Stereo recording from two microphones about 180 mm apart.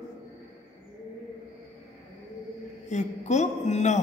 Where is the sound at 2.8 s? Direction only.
40° left (ahead or behind).